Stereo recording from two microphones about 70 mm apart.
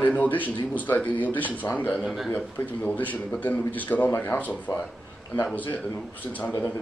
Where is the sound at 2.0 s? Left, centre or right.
Centre.